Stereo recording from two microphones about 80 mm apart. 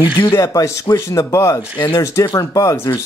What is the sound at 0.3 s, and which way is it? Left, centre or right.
A man's voice, left.